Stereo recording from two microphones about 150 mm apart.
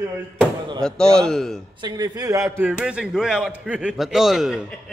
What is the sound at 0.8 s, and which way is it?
Speech, 5° left (ahead or behind).